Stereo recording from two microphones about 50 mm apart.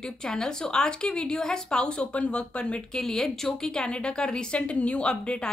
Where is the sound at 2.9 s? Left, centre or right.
Centre.